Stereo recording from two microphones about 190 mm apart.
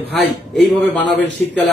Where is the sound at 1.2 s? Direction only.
70° left (ahead or behind).